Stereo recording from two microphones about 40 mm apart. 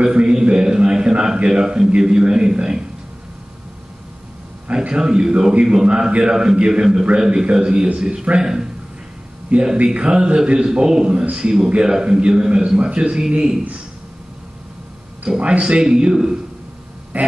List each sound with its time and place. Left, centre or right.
0.0 s a sound: right
2.0 s a man's voice: right
4.7 s a man's voice: centre
9.5 s speech: right
9.9 s a man's voice: right
15.3 s a man's voice: right